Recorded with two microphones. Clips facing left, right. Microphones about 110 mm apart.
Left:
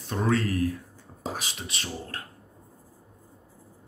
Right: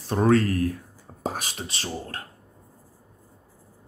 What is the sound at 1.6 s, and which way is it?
Speech, 35° right (ahead or behind).